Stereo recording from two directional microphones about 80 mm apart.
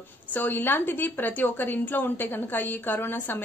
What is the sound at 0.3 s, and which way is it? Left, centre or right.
A woman's voice, left.